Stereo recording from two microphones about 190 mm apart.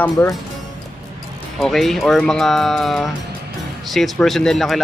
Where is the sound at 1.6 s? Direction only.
Centre (ahead or behind).